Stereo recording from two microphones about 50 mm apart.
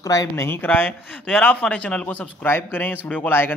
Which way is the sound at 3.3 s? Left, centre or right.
Left.